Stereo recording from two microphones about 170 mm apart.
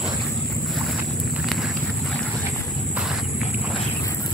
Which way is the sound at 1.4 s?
Centre (ahead or behind).